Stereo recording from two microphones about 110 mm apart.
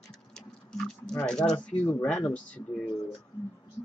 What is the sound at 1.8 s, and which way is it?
Speech, 20° left (ahead or behind).